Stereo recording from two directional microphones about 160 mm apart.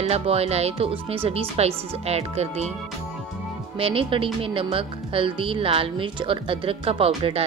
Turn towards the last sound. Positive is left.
turn(degrees=-35)  # may be behind; listen again after turning